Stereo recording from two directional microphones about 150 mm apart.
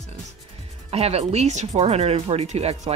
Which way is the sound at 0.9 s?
45° right (ahead or behind).